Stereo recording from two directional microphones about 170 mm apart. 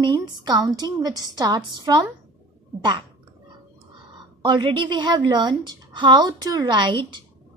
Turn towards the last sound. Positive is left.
turn(degrees=-25)  # may be behind; listen again after turning